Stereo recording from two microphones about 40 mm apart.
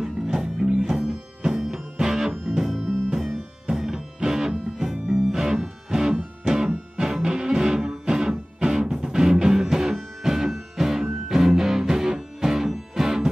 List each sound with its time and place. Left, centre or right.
0.0 s music: centre
2.6 s music: centre